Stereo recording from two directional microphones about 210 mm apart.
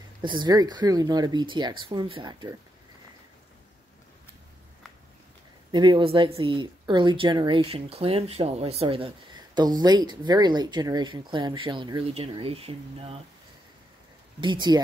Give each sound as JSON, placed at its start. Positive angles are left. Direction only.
{"t": 0.2, "sound": "speech", "side_deg": -20}
{"t": 5.7, "sound": "speech", "side_deg": -20}
{"t": 14.4, "sound": "speech", "side_deg": -20}